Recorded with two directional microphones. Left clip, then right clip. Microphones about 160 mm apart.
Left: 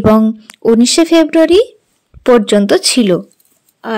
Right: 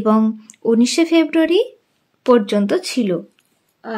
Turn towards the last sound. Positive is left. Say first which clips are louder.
# left 8 dB
turn(degrees=55)  # may be behind; listen again after turning